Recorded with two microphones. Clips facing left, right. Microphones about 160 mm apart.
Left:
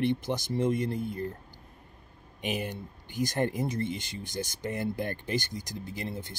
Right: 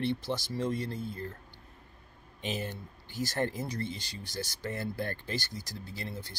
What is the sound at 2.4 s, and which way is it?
Speech, 15° left (ahead or behind).